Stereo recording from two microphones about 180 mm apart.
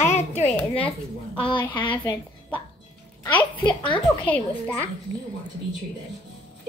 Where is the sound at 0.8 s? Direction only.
30° left (ahead or behind).